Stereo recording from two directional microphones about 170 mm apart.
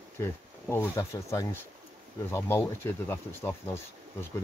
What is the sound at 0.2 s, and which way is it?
Speech, 15° left (ahead or behind).